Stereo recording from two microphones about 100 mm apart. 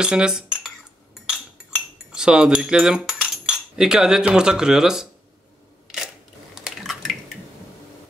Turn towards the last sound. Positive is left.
turn(degrees=0)  # may be behind; listen again after turning